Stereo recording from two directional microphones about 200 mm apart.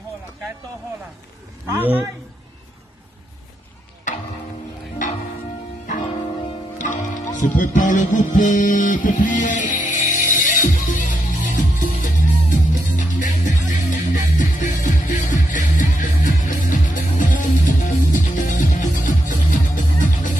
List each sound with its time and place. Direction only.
1.8 s a man's voice: 10° right (ahead or behind)
5.0 s music: 40° left (ahead or behind)
6.8 s music: 40° left (ahead or behind)